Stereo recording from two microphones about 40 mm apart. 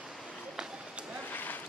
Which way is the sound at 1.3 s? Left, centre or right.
Left.